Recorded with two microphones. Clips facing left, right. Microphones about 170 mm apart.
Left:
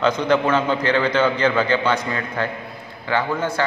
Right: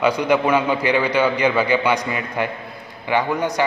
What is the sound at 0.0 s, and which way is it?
A man's voice, 10° right (ahead or behind).